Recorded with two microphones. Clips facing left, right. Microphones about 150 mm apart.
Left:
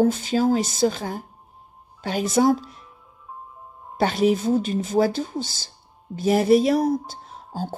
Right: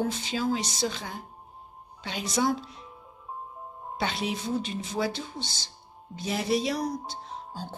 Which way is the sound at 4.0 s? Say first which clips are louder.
Left 11 dB; 45° left (ahead or behind).